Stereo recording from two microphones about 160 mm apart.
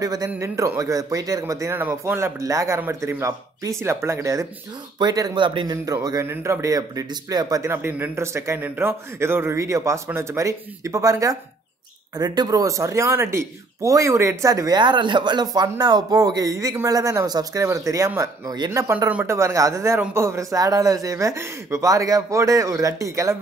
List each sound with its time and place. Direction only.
0.0 s a man's voice: 20° right (ahead or behind)